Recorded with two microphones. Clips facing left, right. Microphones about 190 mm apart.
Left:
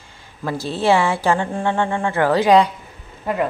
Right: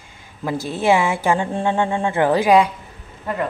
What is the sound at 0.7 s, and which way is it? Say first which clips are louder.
Speech: left 1 dB; 20° right (ahead or behind).